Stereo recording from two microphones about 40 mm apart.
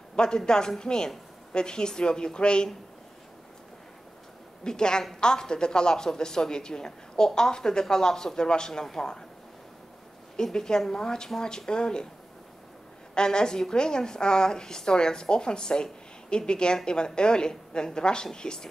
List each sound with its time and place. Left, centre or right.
0.1 s a sound: left
0.5 s a woman's voice: centre
4.6 s a woman's voice: centre
10.3 s a woman's voice: centre
13.1 s a woman's voice: centre